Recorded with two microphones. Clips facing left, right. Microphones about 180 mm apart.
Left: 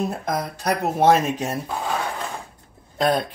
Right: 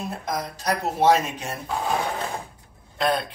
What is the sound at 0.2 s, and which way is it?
Speech, 55° left (ahead or behind).